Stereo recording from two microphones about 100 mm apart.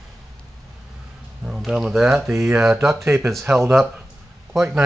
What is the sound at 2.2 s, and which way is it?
Speech, 20° right (ahead or behind).